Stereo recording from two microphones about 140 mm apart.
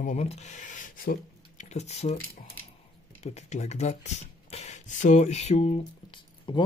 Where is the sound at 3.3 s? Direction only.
55° left (ahead or behind).